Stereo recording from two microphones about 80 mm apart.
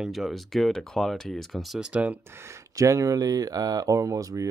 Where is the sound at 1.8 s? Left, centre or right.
Centre.